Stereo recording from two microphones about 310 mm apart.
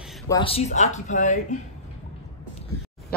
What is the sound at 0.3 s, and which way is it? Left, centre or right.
Speech, centre.